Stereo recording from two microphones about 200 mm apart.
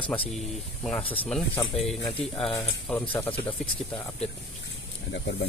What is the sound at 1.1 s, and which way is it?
Speech, 10° left (ahead or behind).